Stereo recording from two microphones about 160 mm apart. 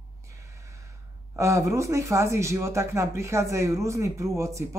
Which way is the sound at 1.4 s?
20° right (ahead or behind).